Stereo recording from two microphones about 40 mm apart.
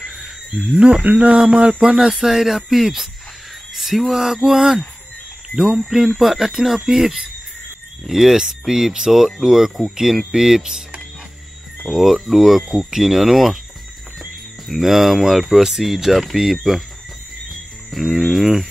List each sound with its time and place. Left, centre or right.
0.0 s wild animals: centre
0.7 s speech: right; by 10.8 s centre
11.9 s speech: centre
14.7 s speech: centre
17.9 s speech: centre